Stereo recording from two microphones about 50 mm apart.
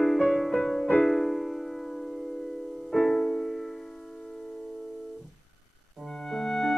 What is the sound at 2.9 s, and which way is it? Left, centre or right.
Music, centre.